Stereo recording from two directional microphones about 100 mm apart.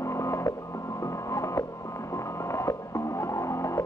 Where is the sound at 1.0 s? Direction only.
30° left (ahead or behind).